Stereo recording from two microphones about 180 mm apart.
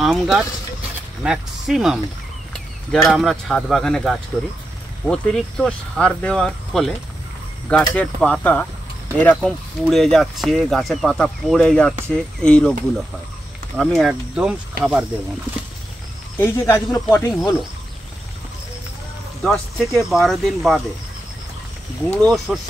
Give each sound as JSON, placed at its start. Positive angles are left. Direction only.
{"t": 0.0, "sound": "speech", "side_deg": 0}
{"t": 7.9, "sound": "speech", "side_deg": 10}
{"t": 16.3, "sound": "speech", "side_deg": 15}
{"t": 19.4, "sound": "speech", "side_deg": 0}
{"t": 22.2, "sound": "speech", "side_deg": 0}